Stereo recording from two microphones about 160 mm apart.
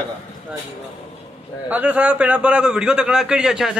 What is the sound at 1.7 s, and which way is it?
A man's voice, 10° right (ahead or behind).